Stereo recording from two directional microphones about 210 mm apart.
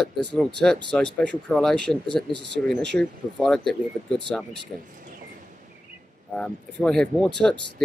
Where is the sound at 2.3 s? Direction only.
55° right (ahead or behind).